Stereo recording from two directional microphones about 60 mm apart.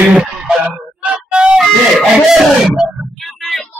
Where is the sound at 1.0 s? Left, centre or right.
Centre.